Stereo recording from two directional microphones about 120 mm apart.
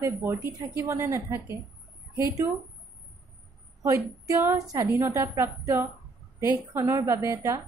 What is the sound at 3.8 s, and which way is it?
A woman's voice, 30° right (ahead or behind).